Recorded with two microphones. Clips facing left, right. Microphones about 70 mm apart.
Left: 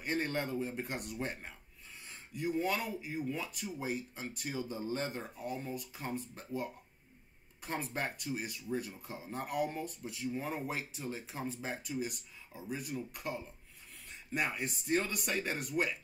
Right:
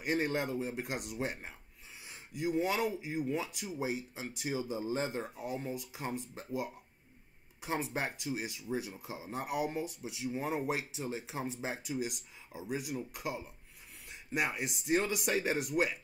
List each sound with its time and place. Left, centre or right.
0.0 s speech: centre